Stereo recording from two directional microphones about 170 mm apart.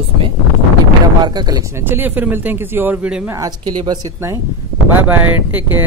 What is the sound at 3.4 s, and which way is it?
Speech, 25° right (ahead or behind).